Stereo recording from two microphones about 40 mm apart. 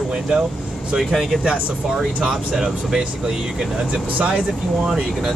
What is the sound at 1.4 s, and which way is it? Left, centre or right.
Speech, right.